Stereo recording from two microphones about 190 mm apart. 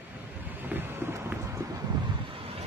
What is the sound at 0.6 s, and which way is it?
Thunder, 10° right (ahead or behind).